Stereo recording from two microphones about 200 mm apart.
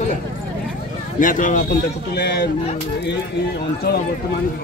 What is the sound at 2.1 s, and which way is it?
Speech, 55° left (ahead or behind).